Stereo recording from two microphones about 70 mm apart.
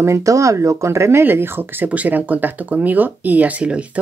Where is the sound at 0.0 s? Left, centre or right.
Right.